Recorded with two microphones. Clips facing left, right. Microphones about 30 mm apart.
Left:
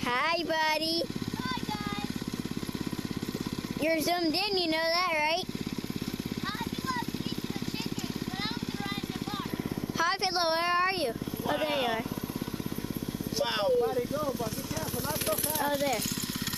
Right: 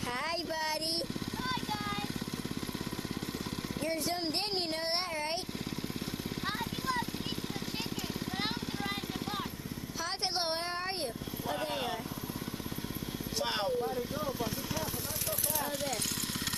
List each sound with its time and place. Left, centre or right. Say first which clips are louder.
0.1 s speech: left 8 dB; left
4.7 s speech: left 6 dB; left
5.0 s speech: left 8 dB; left
9.9 s vehicle: left 6 dB; centre
11.6 s speech: left 7 dB; left
13.4 s speech: left 5 dB; centre
13.7 s speech: left 6 dB; centre
14.1 s speech: left 4 dB; centre
15.6 s speech: left 9 dB; centre